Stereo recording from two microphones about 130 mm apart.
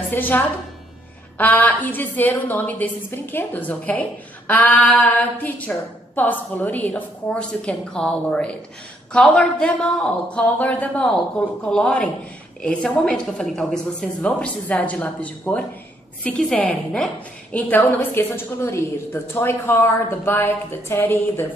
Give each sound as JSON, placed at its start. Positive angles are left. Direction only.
{"t": 0.1, "sound": "a woman's voice", "side_deg": 15}